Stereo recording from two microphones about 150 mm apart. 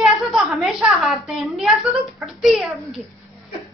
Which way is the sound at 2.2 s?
Centre (ahead or behind).